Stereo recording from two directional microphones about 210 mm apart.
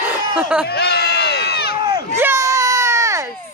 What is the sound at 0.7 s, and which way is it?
Crowd, 50° left (ahead or behind).